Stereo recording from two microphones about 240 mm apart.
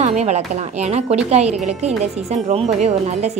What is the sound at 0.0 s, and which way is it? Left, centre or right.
Speech, right.